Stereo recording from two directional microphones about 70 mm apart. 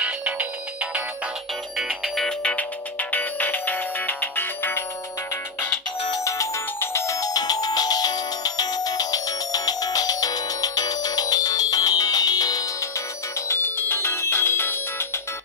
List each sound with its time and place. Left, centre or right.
0.0 s music: right
2.1 s music: centre
2.5 s music: left
6.2 s music: left
13.5 s music: left